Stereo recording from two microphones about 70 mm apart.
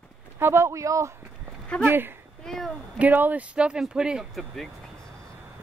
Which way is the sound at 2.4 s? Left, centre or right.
Centre.